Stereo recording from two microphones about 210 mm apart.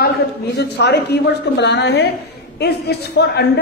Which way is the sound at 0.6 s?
55° left (ahead or behind).